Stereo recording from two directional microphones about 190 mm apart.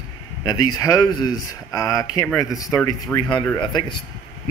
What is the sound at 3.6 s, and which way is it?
Speech, 25° left (ahead or behind).